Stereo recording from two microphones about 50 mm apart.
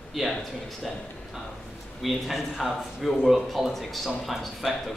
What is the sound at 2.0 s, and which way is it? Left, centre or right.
Speech, centre.